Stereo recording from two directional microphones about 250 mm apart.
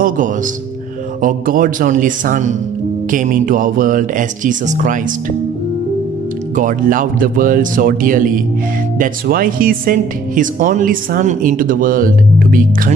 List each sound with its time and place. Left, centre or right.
1.2 s speech: right
6.5 s speech: right